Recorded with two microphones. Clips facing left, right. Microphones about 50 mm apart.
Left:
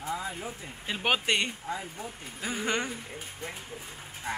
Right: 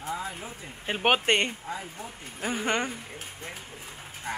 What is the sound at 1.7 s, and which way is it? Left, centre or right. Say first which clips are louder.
Speech: left 1 dB; centre.